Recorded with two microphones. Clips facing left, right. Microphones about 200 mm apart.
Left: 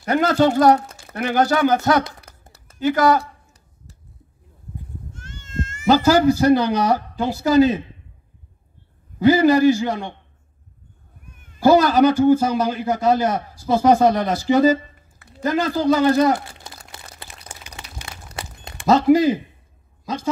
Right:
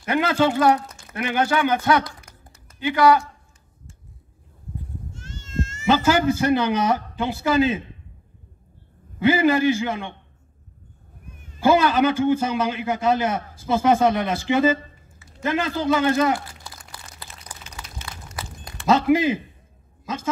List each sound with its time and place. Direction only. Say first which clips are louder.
0.0 s a man's voice: left 3 dB; 40° left (ahead or behind)
2.0 s a sound: left 1 dB; 30° left (ahead or behind)
5.1 s a sound: even; 55° left (ahead or behind)
5.9 s a man's voice: left 4 dB; 40° left (ahead or behind)
9.2 s a man's voice: left 4 dB; 40° left (ahead or behind)
11.4 s a man's voice: left 4 dB; 45° left (ahead or behind)
16.3 s crumpling: left 2 dB; 25° left (ahead or behind)
18.6 s a sound: left 1 dB; 25° left (ahead or behind)
18.9 s a man's voice: left 4 dB; 40° left (ahead or behind)